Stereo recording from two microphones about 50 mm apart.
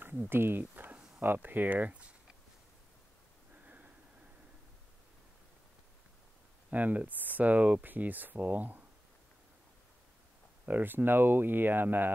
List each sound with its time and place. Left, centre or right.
0.3 s speech: right
3.5 s a sound: right
6.7 s speech: right
10.6 s speech: right